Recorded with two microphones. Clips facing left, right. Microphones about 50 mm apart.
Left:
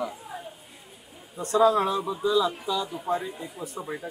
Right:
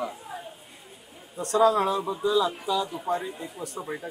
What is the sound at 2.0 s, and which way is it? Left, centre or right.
Speech, centre.